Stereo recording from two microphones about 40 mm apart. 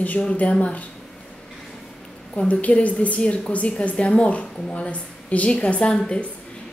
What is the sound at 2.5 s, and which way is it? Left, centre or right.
A woman's voice, left.